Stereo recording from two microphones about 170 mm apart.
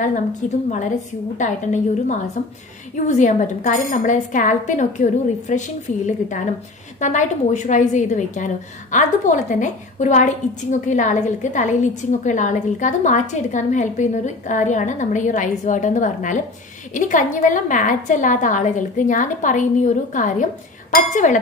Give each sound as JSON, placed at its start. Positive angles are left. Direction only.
{"t": 0.4, "sound": "a woman's voice", "side_deg": 45}